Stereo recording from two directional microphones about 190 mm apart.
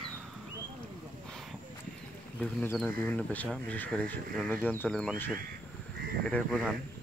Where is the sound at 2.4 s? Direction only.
10° left (ahead or behind).